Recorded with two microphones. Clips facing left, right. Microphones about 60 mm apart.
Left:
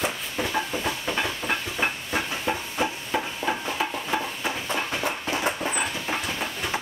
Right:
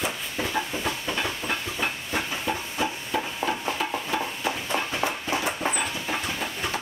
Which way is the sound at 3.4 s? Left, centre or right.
Centre.